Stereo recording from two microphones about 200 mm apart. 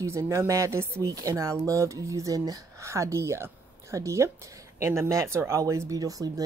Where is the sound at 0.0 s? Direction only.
15° right (ahead or behind).